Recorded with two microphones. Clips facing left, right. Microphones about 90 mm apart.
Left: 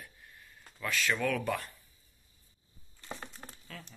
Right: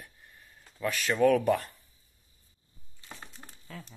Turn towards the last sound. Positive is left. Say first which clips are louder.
# right 3 dB
turn(degrees=-20)  # may be behind; listen again after turning